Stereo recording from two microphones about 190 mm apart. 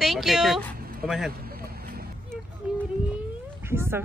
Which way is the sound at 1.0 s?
Centre (ahead or behind).